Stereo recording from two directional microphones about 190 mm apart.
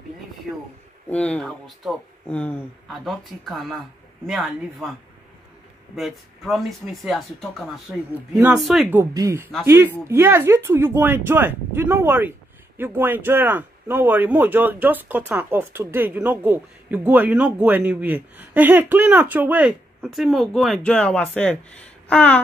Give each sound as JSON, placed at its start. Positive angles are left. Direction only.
{"t": 1.0, "sound": "speech", "side_deg": 5}
{"t": 5.9, "sound": "speech", "side_deg": 0}
{"t": 8.9, "sound": "speech", "side_deg": -15}
{"t": 22.0, "sound": "a sound", "side_deg": 5}